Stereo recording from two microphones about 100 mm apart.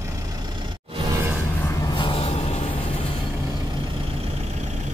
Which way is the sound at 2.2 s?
90° left.